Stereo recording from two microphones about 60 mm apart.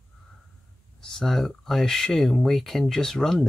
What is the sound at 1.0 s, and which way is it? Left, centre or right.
Speech, centre.